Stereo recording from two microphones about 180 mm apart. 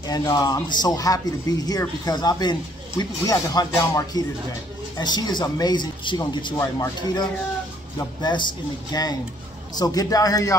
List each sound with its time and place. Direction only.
0.1 s speech: 20° left (ahead or behind)